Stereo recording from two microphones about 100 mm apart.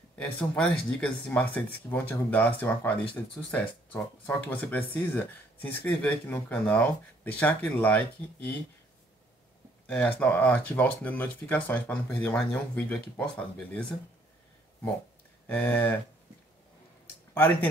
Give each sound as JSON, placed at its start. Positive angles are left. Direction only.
{"t": 0.2, "sound": "speech", "side_deg": 10}
{"t": 9.8, "sound": "speech", "side_deg": 15}
{"t": 15.4, "sound": "speech", "side_deg": 15}
{"t": 17.3, "sound": "speech", "side_deg": 20}